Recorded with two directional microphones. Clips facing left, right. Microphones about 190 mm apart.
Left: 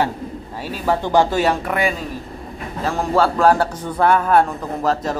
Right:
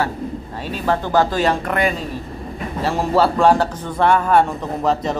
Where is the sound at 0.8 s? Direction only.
10° left (ahead or behind).